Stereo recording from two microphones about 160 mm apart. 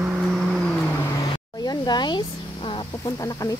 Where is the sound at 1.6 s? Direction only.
25° left (ahead or behind).